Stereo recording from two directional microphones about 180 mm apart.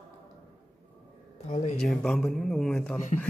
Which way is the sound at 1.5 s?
40° left (ahead or behind).